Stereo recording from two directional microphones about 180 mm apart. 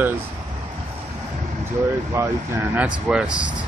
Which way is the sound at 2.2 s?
15° right (ahead or behind).